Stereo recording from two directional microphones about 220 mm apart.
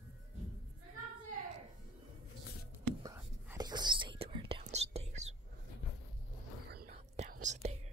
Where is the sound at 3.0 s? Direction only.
15° right (ahead or behind).